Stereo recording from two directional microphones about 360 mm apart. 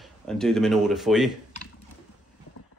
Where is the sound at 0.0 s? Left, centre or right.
Centre.